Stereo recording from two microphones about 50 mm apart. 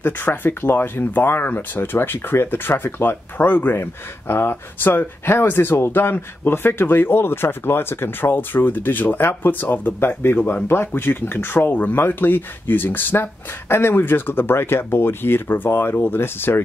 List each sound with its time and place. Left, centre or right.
0.0 s speech: left
3.8 s speech: left
13.2 s speech: left